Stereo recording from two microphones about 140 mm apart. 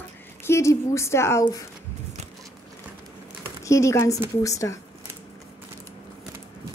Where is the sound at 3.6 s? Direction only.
20° left (ahead or behind).